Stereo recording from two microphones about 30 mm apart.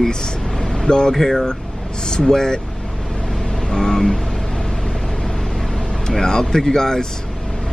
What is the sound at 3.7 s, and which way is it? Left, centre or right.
Vehicle, centre.